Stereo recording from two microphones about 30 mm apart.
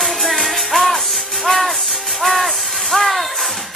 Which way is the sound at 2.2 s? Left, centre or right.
Centre.